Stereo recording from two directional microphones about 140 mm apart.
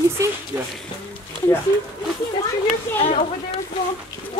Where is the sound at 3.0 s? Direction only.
50° left (ahead or behind).